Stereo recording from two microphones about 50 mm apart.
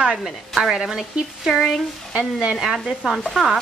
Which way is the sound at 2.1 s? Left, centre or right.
Right.